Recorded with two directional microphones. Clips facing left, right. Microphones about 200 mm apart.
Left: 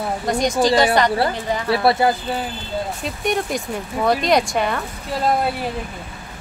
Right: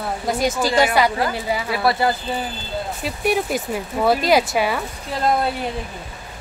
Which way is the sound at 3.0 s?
5° right (ahead or behind).